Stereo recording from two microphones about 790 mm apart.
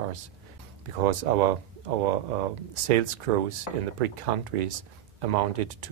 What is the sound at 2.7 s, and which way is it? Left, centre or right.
Speech, right.